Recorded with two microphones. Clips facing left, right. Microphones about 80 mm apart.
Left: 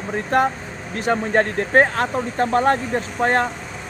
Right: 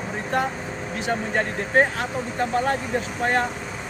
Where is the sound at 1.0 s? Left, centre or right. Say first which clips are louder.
Left 6 dB; left.